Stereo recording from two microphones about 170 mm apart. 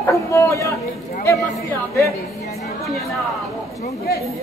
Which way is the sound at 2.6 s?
Centre (ahead or behind).